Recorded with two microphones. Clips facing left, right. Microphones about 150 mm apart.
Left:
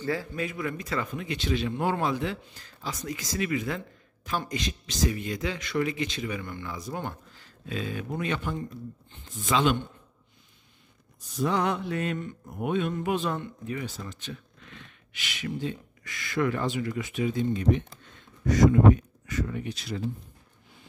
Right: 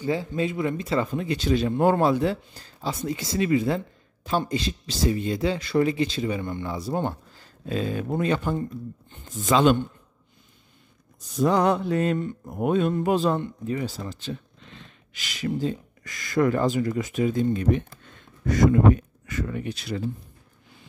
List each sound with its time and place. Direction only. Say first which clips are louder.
0.0 s speech: right 5 dB; 20° right (ahead or behind); by 9.8 s 40° right (ahead or behind)
11.4 s speech: right 6 dB; 35° right (ahead or behind); by 20.0 s 60° right (ahead or behind)